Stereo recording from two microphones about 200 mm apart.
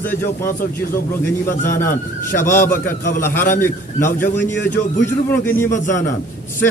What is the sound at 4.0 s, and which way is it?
Speech, 40° left (ahead or behind).